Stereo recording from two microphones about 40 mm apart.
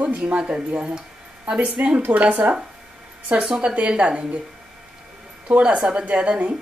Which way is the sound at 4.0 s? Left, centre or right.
Right.